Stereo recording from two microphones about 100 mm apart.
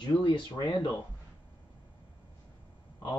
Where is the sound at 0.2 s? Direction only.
50° left (ahead or behind).